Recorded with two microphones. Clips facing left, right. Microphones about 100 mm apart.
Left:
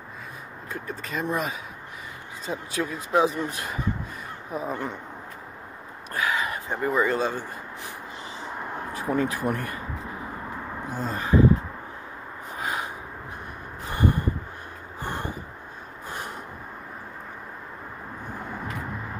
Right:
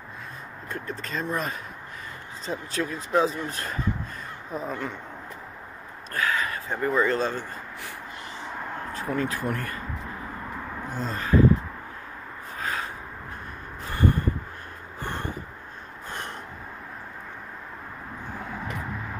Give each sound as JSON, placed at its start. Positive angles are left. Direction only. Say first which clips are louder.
{"t": 0.7, "sound": "speech", "louder": "even", "side_deg": 10}
{"t": 6.1, "sound": "speech", "louder": "even", "side_deg": 15}
{"t": 10.9, "sound": "speech", "louder": "left 1 dB", "side_deg": 15}
{"t": 12.5, "sound": "a sound", "louder": "left 1 dB", "side_deg": 15}
{"t": 15.0, "sound": "vehicle", "louder": "left 1 dB", "side_deg": 15}
{"t": 16.1, "sound": "a sound", "louder": "left 1 dB", "side_deg": 10}